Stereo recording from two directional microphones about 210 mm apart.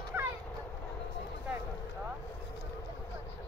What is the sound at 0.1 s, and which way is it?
Vehicle, 10° right (ahead or behind).